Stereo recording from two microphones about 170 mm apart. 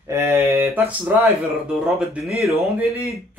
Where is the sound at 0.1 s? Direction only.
15° right (ahead or behind).